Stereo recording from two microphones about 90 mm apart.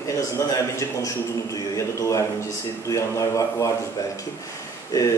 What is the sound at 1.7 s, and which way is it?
A man's voice, 40° left (ahead or behind).